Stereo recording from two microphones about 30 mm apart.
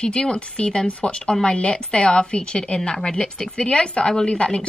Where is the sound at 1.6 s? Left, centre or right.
Left; by 3.5 s centre.